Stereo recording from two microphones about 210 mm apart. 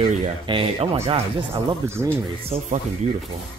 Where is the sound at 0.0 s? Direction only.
25° right (ahead or behind).